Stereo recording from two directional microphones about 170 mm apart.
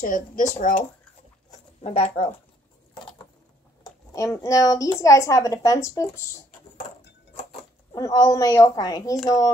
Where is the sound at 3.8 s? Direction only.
20° left (ahead or behind).